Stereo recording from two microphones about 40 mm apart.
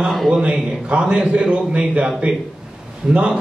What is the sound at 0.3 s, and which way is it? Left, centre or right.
A man's voice, right.